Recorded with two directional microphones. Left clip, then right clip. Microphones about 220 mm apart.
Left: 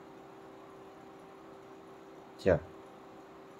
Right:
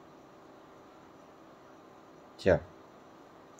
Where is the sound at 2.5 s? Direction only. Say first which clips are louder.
Right 2 dB; 10° right (ahead or behind).